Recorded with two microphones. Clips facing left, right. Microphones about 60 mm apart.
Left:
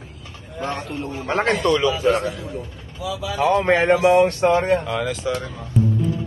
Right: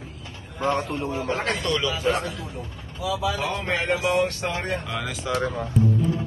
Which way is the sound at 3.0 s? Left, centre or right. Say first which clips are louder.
Left 3 dB; centre.